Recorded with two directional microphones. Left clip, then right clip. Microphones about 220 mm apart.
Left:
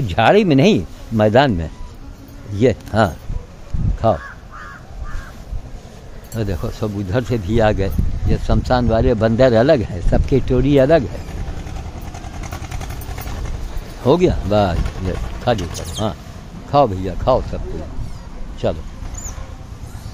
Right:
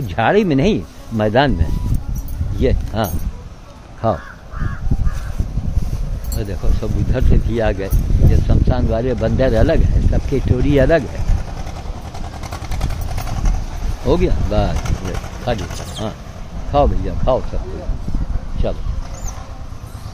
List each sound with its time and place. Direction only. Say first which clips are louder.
0.0 s speech: left 2 dB; 15° left (ahead or behind)
4.1 s speech: left 2 dB; 5° left (ahead or behind)
6.3 s speech: left 3 dB; 30° left (ahead or behind)
14.0 s speech: left 3 dB; 35° left (ahead or behind)
18.6 s speech: left 3 dB; 30° left (ahead or behind)